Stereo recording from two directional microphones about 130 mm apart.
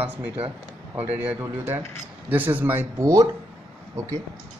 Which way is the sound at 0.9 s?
10° right (ahead or behind).